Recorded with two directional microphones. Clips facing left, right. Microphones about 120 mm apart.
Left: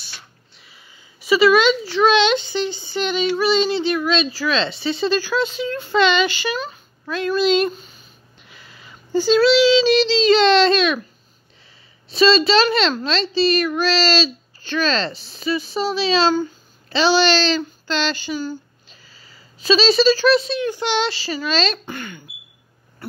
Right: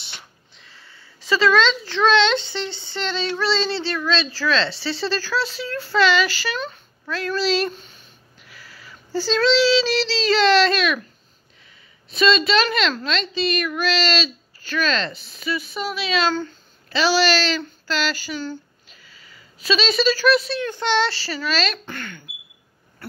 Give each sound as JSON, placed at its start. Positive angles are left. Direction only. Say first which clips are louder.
{"t": 0.6, "sound": "speech", "louder": "right 2 dB", "side_deg": 10}
{"t": 6.5, "sound": "speech", "louder": "left 2 dB", "side_deg": 5}
{"t": 7.1, "sound": "speech", "louder": "left 4 dB", "side_deg": 15}
{"t": 7.7, "sound": "a sound", "louder": "left 2 dB", "side_deg": 5}
{"t": 8.4, "sound": "female singing", "louder": "even", "side_deg": 20}
{"t": 12.1, "sound": "a child's voice", "louder": "left 4 dB", "side_deg": 30}
{"t": 21.8, "sound": "speech", "louder": "left 2 dB", "side_deg": 15}